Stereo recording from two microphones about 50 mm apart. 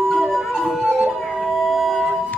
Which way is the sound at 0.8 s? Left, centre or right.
Centre.